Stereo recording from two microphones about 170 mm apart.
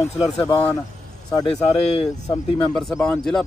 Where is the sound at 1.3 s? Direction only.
30° left (ahead or behind).